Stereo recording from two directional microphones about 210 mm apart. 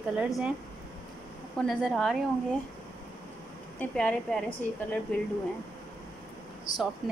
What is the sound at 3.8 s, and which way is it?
Speech, 5° left (ahead or behind).